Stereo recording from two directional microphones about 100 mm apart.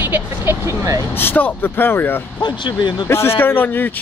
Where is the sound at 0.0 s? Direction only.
20° right (ahead or behind).